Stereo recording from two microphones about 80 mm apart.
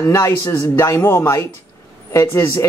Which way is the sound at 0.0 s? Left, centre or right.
Left.